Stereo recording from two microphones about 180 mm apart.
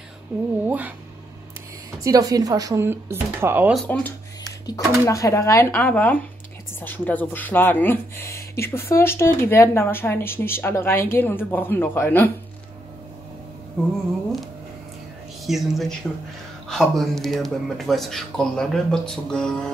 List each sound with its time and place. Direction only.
0.7 s speech: 10° right (ahead or behind)
2.0 s speech: 20° right (ahead or behind)
3.7 s speech: 5° left (ahead or behind)
4.6 s speech: 20° left (ahead or behind)
15.4 s speech: centre (ahead or behind)